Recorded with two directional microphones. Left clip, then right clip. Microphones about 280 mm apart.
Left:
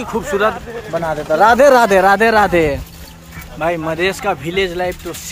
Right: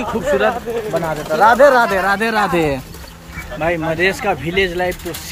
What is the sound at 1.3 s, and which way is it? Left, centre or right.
Speech, left.